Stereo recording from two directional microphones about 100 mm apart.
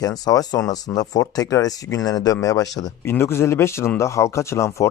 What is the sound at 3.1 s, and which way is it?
Speech, 25° left (ahead or behind).